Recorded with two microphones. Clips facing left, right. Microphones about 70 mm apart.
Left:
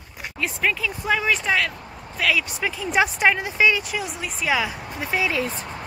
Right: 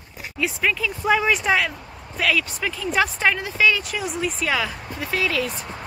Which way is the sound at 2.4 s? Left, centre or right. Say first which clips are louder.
Even; centre.